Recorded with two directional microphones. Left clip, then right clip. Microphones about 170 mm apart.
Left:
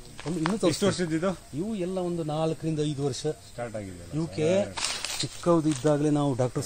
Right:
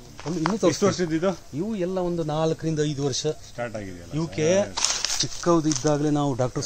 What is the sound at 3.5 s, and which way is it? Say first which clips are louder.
Speech: right 4 dB; 30° left (ahead or behind).